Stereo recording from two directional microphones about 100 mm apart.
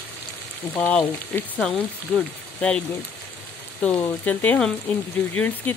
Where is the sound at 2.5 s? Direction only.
10° left (ahead or behind).